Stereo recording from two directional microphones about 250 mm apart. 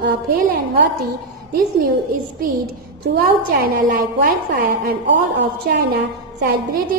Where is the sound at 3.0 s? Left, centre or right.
Right.